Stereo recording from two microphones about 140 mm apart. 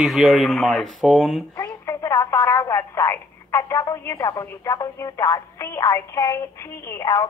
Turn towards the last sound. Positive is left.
turn(degrees=25)  # may be behind; listen again after turning